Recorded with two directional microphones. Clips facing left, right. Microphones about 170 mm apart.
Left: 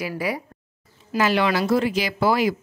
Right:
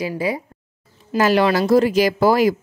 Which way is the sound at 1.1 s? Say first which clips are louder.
Right 4 dB; 40° right (ahead or behind).